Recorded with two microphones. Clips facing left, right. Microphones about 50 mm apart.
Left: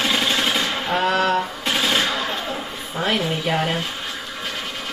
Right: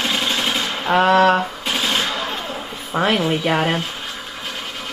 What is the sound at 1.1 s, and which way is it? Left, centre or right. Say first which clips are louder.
Speech: right 7 dB; right.